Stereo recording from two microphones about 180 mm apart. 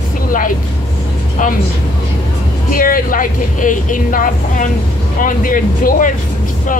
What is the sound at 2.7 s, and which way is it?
Speech, 50° left (ahead or behind).